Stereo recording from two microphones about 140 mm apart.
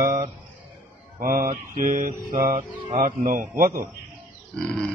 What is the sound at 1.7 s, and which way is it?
Mantra, 75° right (ahead or behind).